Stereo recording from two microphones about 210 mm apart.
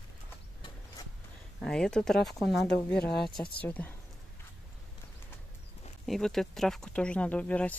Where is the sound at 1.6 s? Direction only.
Centre (ahead or behind).